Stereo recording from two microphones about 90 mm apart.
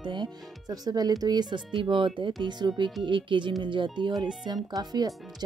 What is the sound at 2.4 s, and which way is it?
Speech, 55° right (ahead or behind).